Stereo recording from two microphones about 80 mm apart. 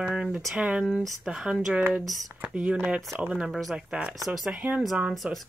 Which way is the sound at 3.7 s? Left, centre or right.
Centre.